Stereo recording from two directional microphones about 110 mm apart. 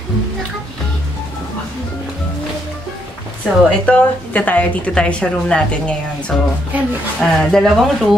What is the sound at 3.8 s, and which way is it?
Speech, 15° left (ahead or behind).